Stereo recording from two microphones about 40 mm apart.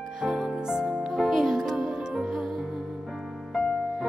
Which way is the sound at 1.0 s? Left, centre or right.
Centre.